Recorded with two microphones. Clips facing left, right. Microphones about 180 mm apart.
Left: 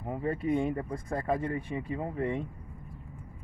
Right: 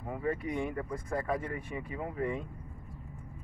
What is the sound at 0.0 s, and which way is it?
Speech, 25° left (ahead or behind).